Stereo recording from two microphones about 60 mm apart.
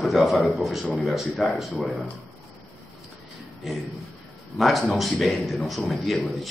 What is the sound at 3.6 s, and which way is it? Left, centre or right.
A man's voice, centre.